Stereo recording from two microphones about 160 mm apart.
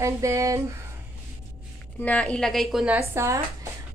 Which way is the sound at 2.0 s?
10° left (ahead or behind).